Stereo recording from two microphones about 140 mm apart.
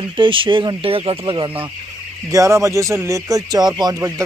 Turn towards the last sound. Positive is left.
turn(degrees=-30)  # may be behind; listen again after turning